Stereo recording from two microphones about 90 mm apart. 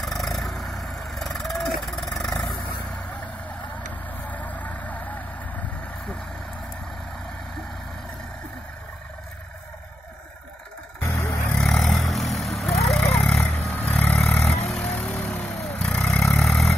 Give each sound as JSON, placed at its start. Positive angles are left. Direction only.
{"t": 0.0, "sound": "vehicle", "side_deg": 0}
{"t": 1.0, "sound": "wild animals", "side_deg": 5}
{"t": 4.3, "sound": "vehicle", "side_deg": 15}
{"t": 11.0, "sound": "vehicle", "side_deg": 35}
{"t": 11.5, "sound": "vehicle", "side_deg": 5}